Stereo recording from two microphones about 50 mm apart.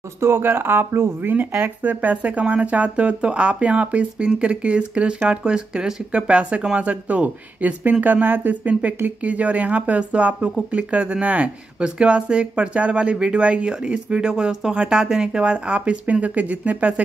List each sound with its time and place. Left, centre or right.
0.2 s speech: right
1.8 s speech: right